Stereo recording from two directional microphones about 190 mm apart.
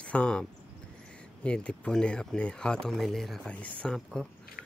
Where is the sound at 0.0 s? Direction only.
5° left (ahead or behind).